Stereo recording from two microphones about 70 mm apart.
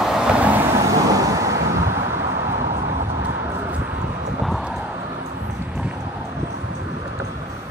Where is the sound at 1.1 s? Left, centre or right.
Right.